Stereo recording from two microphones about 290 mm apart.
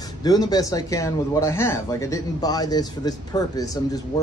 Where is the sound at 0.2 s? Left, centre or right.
Centre.